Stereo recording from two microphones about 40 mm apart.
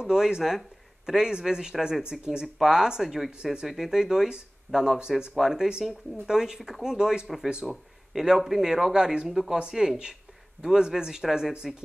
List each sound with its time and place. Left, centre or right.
0.0 s speech: centre
8.1 s speech: centre